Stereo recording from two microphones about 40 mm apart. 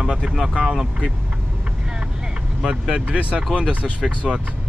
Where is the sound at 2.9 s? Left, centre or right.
Right.